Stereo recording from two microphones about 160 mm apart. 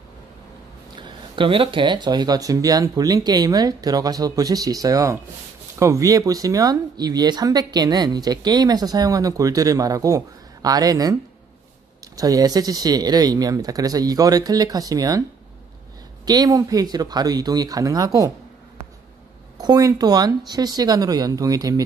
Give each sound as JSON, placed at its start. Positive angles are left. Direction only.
{"t": 0.9, "sound": "speech", "side_deg": -30}
{"t": 12.2, "sound": "speech", "side_deg": -20}
{"t": 16.3, "sound": "speech", "side_deg": -20}
{"t": 19.6, "sound": "speech", "side_deg": -25}